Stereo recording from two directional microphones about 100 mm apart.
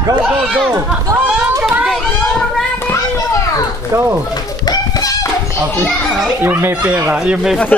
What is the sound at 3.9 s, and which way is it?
Speech, 25° right (ahead or behind).